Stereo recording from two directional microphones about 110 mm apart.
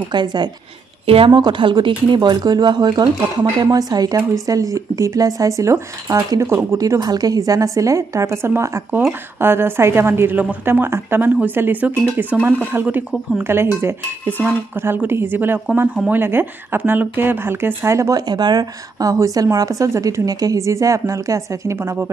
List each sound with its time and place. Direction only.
0.1 s a woman's voice: 40° right (ahead or behind)
1.0 s a woman's voice: 55° right (ahead or behind); by 18.2 s 25° right (ahead or behind)
18.2 s a woman's voice: 40° right (ahead or behind); by 22.1 s 25° right (ahead or behind)